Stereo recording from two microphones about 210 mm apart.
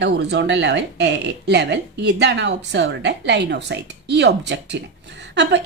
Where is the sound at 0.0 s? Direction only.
55° right (ahead or behind).